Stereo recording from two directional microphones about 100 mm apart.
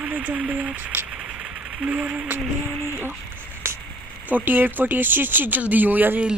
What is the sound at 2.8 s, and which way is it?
Speech, 25° left (ahead or behind).